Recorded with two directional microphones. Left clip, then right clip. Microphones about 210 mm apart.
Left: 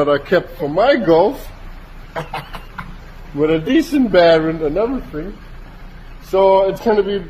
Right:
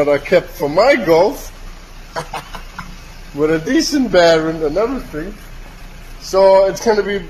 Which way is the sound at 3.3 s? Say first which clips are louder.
Even; centre (ahead or behind).